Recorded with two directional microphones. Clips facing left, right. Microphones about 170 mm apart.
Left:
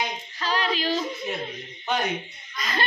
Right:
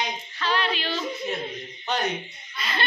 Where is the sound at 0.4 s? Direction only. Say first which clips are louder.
Even; 35° left (ahead or behind).